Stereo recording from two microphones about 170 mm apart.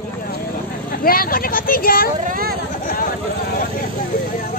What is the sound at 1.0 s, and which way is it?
Speech, 60° left (ahead or behind).